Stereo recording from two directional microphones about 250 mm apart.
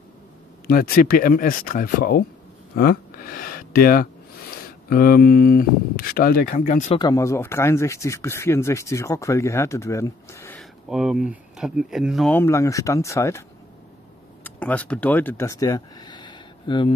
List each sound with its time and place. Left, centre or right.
0.7 s speech: left
7.0 s speech: centre
14.4 s speech: centre